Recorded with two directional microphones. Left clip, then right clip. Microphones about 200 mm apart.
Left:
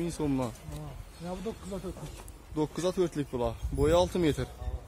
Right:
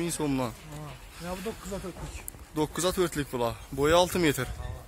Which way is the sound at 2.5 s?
5° left (ahead or behind).